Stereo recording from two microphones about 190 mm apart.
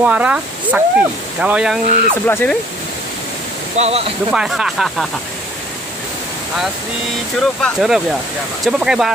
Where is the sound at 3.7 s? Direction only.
35° right (ahead or behind).